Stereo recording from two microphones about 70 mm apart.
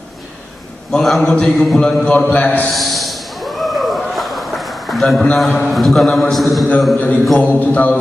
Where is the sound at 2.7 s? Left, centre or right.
Centre.